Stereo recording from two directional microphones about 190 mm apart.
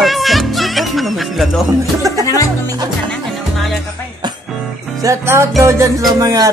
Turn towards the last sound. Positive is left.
turn(degrees=-15)  # may be behind; listen again after turning